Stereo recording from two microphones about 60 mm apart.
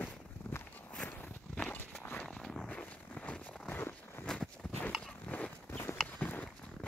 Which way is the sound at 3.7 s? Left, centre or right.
Left.